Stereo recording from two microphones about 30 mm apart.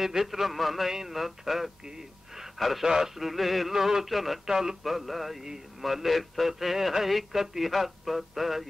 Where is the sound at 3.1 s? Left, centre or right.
Centre.